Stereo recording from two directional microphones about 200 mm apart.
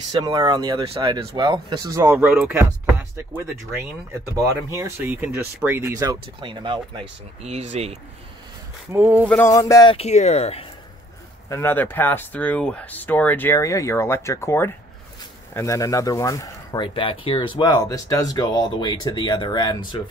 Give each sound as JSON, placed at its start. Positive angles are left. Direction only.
{"t": 0.2, "sound": "speech", "side_deg": -20}
{"t": 8.9, "sound": "speech", "side_deg": -10}
{"t": 9.2, "sound": "speech", "side_deg": 5}
{"t": 9.5, "sound": "speech", "side_deg": 15}
{"t": 9.9, "sound": "speech", "side_deg": 35}
{"t": 11.4, "sound": "speech", "side_deg": 10}